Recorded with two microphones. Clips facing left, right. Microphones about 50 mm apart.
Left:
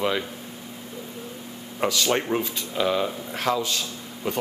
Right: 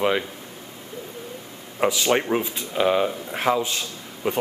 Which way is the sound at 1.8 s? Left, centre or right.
Centre.